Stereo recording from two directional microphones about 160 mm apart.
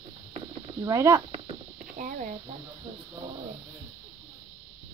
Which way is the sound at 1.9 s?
55° right (ahead or behind).